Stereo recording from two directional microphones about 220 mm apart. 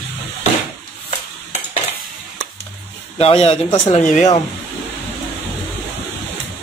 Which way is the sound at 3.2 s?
25° left (ahead or behind).